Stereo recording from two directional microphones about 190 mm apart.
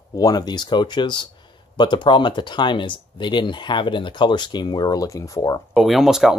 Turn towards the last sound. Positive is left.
turn(degrees=0)  # may be behind; listen again after turning